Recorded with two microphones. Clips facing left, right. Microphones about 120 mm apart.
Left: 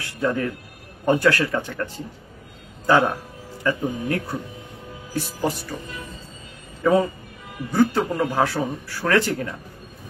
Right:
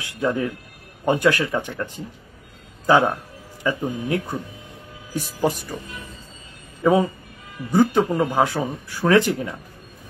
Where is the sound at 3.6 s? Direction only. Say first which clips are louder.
Even; 15° right (ahead or behind).